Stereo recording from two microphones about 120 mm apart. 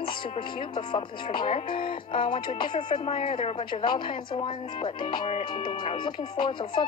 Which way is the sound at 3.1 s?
50° left (ahead or behind).